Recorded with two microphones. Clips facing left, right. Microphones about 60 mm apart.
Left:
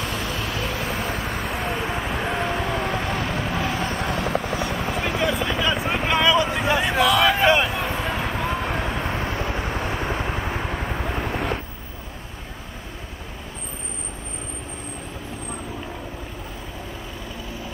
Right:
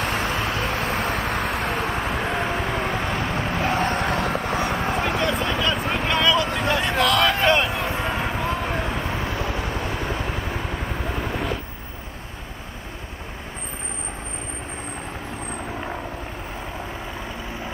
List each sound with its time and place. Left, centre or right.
0.0 s vehicle: right
2.0 s vehicle: centre
3.3 s vehicle: right
3.8 s vehicle: right
5.5 s a sound: centre
9.2 s vehicle: left
9.9 s vehicle: centre